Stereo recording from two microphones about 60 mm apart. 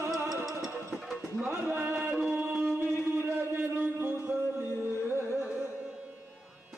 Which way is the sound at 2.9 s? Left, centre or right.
Right.